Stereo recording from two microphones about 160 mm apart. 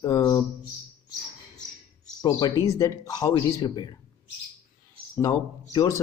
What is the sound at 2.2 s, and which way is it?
A man's voice, 25° left (ahead or behind).